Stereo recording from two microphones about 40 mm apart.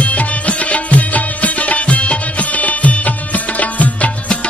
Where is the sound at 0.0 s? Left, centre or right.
Left.